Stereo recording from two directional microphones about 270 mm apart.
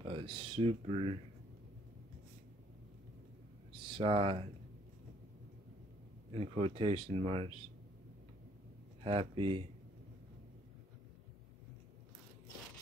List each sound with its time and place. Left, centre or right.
0.0 s speech: centre
3.8 s speech: centre
6.3 s speech: right
9.0 s speech: centre